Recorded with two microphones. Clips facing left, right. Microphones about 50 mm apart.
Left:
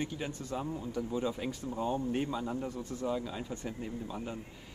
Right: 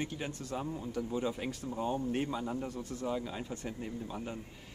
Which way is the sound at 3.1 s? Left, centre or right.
Centre.